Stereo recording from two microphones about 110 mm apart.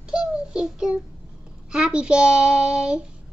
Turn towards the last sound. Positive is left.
turn(degrees=-10)  # may be behind; listen again after turning